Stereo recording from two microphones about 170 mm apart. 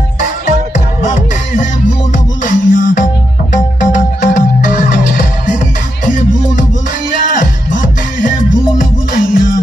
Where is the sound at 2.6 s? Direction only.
50° left (ahead or behind).